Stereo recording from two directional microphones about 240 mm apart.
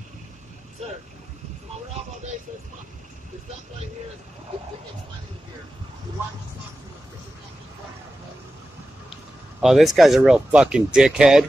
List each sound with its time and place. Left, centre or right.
9.1 s speech: centre